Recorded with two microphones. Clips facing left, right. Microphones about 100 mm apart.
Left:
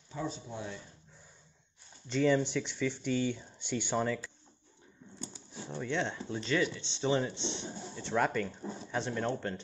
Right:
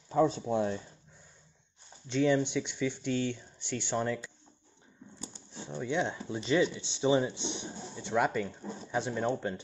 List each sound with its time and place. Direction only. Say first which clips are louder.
0.1 s speech: right 12 dB; 70° right (ahead or behind)
2.0 s speech: right 1 dB; centre (ahead or behind)
3.5 s speech: even; 15° left (ahead or behind)
4.0 s speech: even; centre (ahead or behind)
5.3 s a sound: right 2 dB; 5° left (ahead or behind)
5.8 s speech: right 2 dB; 10° right (ahead or behind)